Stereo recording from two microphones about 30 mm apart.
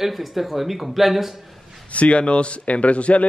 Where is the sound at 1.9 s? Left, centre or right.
Left.